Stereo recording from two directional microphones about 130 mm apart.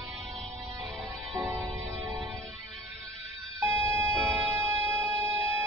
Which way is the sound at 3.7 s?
20° right (ahead or behind).